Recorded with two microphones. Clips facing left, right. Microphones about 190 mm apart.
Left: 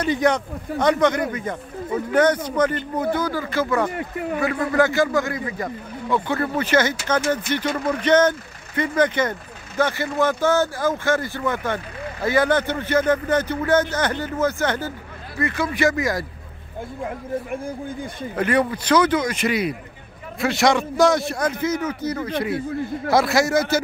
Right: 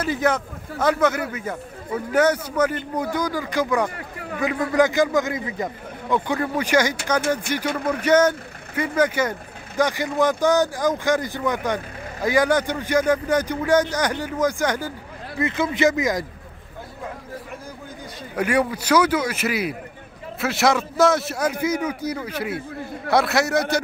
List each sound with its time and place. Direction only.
0.0 s a man's voice: 5° right (ahead or behind)
0.7 s speech: 15° left (ahead or behind)
1.0 s speech: 5° right (ahead or behind)
3.9 s speech: 20° left (ahead or behind)
4.4 s speech: 15° right (ahead or behind)
18.3 s a man's voice: 10° right (ahead or behind)